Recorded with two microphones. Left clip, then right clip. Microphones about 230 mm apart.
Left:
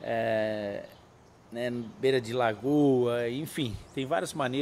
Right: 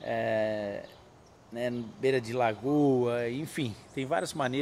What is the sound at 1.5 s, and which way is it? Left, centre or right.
Speech, centre.